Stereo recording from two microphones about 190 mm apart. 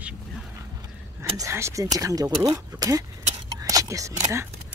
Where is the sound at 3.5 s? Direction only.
20° right (ahead or behind).